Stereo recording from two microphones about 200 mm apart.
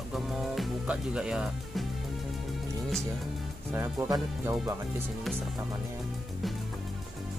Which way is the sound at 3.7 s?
15° right (ahead or behind).